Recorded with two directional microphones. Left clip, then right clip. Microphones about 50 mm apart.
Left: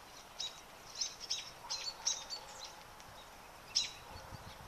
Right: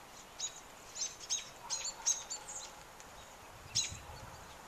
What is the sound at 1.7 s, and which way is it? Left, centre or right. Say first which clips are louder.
Bird: right 1 dB; right.